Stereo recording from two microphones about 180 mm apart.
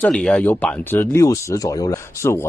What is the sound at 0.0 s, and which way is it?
Speech, 5° left (ahead or behind).